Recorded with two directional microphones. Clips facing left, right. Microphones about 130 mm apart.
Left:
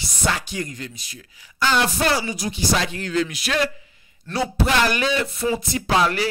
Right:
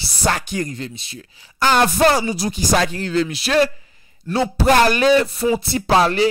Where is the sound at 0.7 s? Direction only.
30° right (ahead or behind).